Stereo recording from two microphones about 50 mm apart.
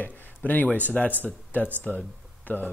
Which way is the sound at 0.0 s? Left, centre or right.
Left.